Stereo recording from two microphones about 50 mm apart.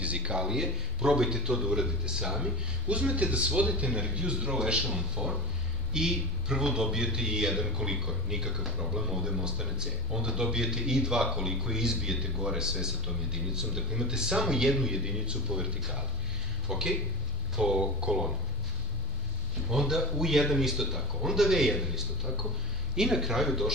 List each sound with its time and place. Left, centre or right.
0.0 s a man's voice: right
2.9 s a man's voice: right
19.7 s a man's voice: centre